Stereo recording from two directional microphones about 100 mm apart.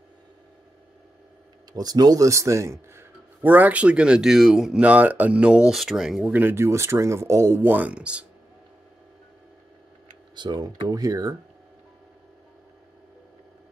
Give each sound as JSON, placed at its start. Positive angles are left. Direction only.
{"t": 1.7, "sound": "a man's voice", "side_deg": -40}
{"t": 6.3, "sound": "speech", "side_deg": -25}
{"t": 10.3, "sound": "speech", "side_deg": -50}